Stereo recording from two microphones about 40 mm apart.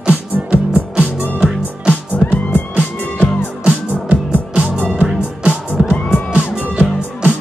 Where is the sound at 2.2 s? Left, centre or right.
Left.